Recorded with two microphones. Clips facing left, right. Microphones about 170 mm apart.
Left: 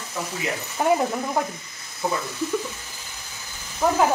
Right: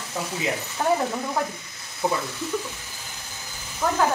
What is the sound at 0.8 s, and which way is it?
Speech, 10° left (ahead or behind).